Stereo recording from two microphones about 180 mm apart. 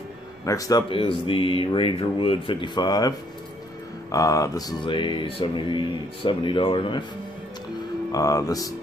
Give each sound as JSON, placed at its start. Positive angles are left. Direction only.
{"t": 0.5, "sound": "music", "side_deg": 20}
{"t": 8.1, "sound": "music", "side_deg": 20}